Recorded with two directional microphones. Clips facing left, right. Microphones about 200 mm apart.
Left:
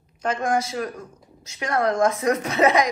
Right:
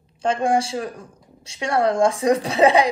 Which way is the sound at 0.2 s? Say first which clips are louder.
Right 3 dB; 30° right (ahead or behind).